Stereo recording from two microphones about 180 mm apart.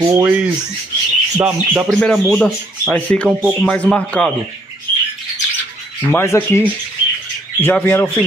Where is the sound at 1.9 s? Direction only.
5° left (ahead or behind).